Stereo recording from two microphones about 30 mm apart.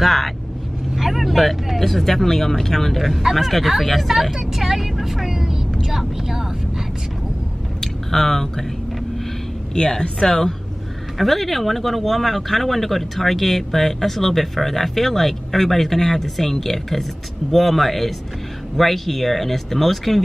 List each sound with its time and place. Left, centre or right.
0.0 s speech: centre
0.9 s speech: centre
1.8 s speech: centre
4.1 s speech: centre
5.3 s vehicle: centre
5.9 s speech: centre
7.8 s a sound: centre
9.8 s speech: left; by 20.2 s centre